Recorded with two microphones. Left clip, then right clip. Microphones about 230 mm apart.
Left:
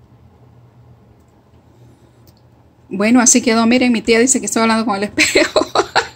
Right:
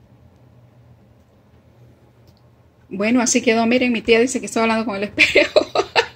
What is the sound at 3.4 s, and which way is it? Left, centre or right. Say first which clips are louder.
Speech: left 3 dB; left.